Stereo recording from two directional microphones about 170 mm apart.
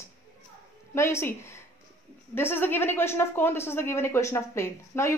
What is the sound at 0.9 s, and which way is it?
A woman's voice, 15° left (ahead or behind).